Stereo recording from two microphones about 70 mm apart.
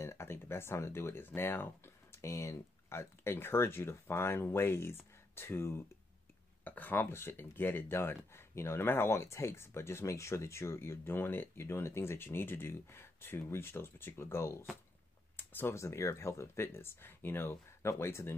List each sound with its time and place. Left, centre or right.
0.0 s speech: left
3.3 s speech: left
6.6 s speech: left